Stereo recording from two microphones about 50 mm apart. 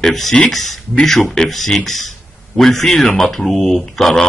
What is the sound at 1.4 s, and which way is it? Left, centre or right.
Speech, centre.